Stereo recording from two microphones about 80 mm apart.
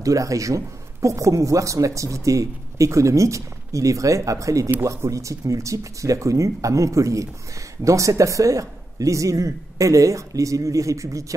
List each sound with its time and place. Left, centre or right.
0.0 s speech: right